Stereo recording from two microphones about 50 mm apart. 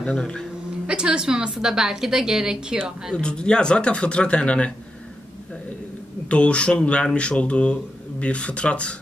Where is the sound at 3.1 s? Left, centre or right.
Centre.